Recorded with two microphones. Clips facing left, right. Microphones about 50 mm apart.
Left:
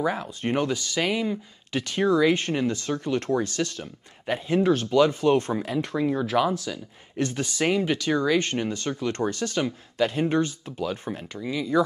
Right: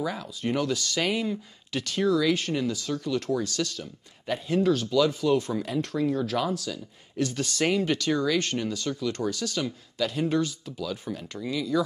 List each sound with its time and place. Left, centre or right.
0.0 s speech: left
0.7 s speech: centre
1.3 s speech: left
5.7 s speech: centre
5.9 s speech: left
7.4 s speech: centre
8.2 s speech: left
11.3 s speech: centre